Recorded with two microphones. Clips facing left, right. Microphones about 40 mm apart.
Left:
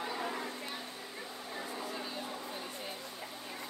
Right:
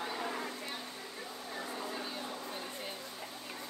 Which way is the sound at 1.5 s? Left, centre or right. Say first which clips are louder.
Even; centre.